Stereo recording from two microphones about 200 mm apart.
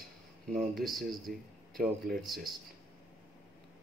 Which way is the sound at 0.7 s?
Centre (ahead or behind).